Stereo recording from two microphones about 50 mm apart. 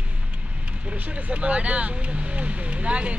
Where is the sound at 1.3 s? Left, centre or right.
Right.